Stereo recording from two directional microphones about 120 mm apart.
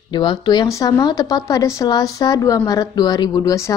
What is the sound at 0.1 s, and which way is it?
Speech, 40° left (ahead or behind).